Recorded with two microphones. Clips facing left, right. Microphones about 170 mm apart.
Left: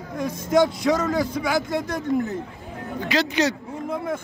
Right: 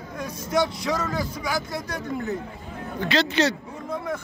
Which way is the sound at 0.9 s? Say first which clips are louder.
Left 5 dB; 20° left (ahead or behind).